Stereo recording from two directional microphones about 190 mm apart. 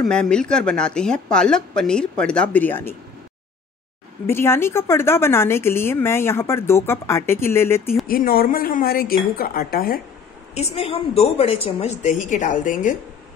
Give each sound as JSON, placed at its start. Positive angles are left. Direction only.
{"t": 0.0, "sound": "speech", "side_deg": 5}
{"t": 4.3, "sound": "a woman's voice", "side_deg": 15}
{"t": 8.1, "sound": "speech", "side_deg": 50}
{"t": 10.5, "sound": "a woman's voice", "side_deg": 35}